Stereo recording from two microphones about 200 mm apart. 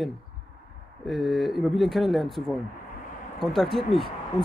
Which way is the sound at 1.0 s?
Centre (ahead or behind).